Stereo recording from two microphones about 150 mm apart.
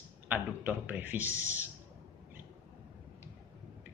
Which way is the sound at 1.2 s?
15° left (ahead or behind).